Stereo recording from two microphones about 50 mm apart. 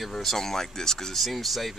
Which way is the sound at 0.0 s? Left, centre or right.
Centre.